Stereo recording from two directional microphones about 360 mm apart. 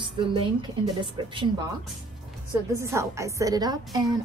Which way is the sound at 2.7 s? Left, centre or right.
Centre.